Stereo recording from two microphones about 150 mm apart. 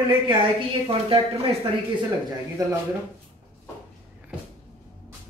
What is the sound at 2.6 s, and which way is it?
Speech, 25° right (ahead or behind).